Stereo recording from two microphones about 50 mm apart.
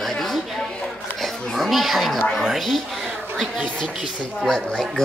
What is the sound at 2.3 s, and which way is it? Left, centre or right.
Speech, centre.